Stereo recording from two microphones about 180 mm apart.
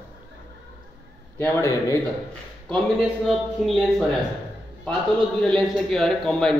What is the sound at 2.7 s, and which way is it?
A man's voice, centre (ahead or behind).